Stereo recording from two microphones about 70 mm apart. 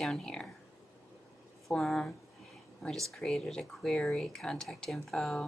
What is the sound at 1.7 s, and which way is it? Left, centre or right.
Speech, centre.